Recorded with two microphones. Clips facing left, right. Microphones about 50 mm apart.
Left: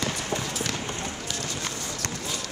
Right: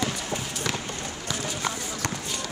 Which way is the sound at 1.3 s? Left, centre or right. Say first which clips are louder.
Right 3 dB; centre.